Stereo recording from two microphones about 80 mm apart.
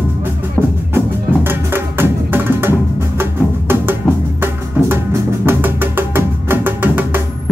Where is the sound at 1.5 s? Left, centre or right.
Right.